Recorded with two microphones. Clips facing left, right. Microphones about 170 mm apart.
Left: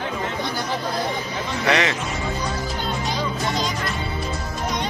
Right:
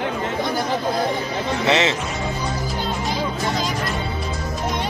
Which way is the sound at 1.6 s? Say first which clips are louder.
Right 1 dB; 25° right (ahead or behind).